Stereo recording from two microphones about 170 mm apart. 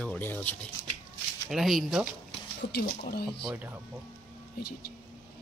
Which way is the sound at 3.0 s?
70° left (ahead or behind).